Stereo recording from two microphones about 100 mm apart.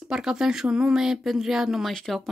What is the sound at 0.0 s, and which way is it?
A woman's voice, 5° right (ahead or behind).